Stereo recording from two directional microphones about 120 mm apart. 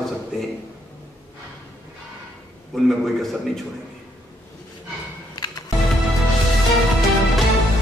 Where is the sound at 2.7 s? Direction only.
Centre (ahead or behind).